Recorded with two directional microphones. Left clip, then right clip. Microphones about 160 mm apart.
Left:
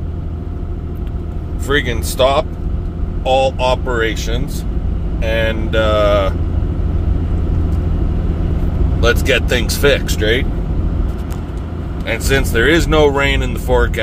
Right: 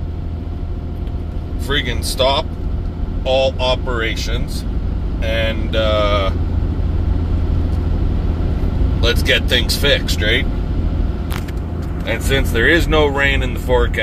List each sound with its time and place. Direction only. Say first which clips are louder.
1.7 s speech: left 3 dB; 35° left (ahead or behind)
9.0 s speech: left 2 dB; 30° left (ahead or behind)
12.1 s speech: left 2 dB; 25° left (ahead or behind)